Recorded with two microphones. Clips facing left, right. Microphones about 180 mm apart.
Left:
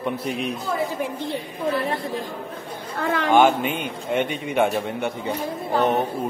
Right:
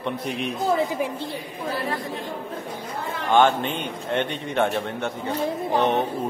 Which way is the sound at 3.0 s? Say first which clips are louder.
Left 10 dB; 90° left.